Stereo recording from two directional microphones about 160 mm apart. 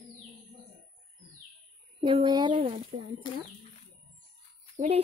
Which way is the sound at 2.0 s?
30° right (ahead or behind).